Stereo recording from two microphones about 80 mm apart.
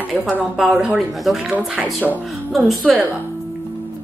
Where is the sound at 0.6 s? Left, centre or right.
Centre.